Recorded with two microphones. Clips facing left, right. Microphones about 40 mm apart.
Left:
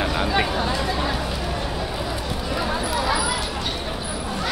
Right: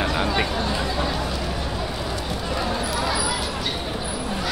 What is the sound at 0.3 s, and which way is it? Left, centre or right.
Speech, centre.